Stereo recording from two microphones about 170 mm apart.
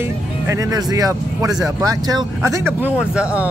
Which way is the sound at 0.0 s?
20° right (ahead or behind).